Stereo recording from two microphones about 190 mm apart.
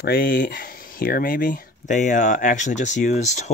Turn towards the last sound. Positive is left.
turn(degrees=35)  # may be behind; listen again after turning